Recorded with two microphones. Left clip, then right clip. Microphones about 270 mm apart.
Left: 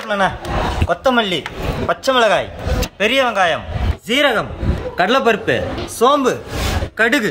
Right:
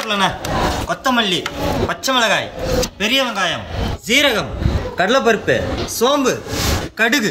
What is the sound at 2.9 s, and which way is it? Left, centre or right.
Speech, centre.